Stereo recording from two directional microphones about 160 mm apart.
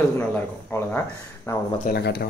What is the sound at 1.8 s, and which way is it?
Speech, 80° left.